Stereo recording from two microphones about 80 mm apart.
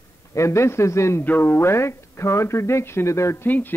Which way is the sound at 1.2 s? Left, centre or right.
Left.